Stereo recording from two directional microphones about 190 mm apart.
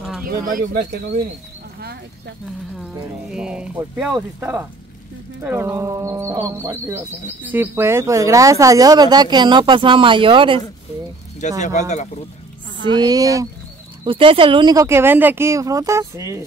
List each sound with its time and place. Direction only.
0.2 s speech: 50° right (ahead or behind)
1.8 s a sound: 55° right (ahead or behind)
2.8 s speech: 5° right (ahead or behind); by 10.6 s 25° right (ahead or behind)
11.4 s speech: 40° left (ahead or behind)
12.8 s speech: 20° right (ahead or behind)